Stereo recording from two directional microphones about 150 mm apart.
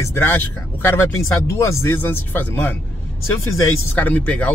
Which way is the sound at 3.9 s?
10° left (ahead or behind).